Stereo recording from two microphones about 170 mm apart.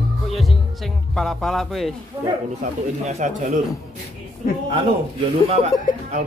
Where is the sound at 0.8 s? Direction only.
Centre (ahead or behind).